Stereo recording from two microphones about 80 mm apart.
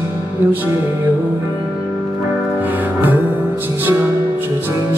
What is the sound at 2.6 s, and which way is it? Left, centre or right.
Music, right.